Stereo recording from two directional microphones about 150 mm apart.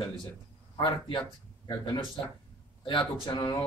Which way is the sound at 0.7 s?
30° left (ahead or behind).